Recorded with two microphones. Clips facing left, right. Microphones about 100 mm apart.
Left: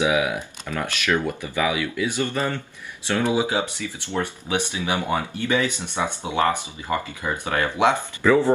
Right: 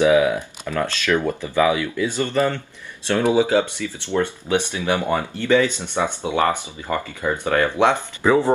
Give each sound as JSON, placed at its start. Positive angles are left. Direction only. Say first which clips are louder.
{"t": 0.0, "sound": "speech", "louder": "right 6 dB", "side_deg": 15}
{"t": 7.9, "sound": "speech", "louder": "right 1 dB", "side_deg": -20}